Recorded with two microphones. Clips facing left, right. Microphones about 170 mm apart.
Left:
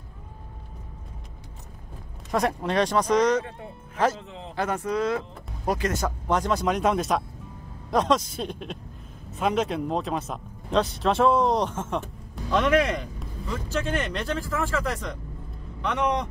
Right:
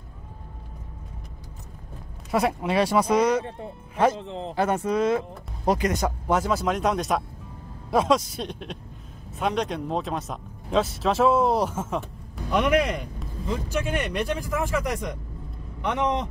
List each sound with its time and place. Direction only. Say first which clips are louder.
2.3 s speech: right 1 dB; 5° right (ahead or behind)
4.3 s speech: right 7 dB; 35° right (ahead or behind)
4.6 s speech: right 2 dB; 25° right (ahead or behind)